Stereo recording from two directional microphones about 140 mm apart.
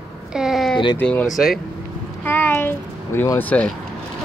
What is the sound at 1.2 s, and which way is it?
Speech, centre (ahead or behind).